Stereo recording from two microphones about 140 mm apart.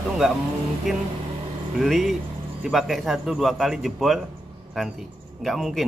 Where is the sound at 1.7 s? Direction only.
Centre (ahead or behind).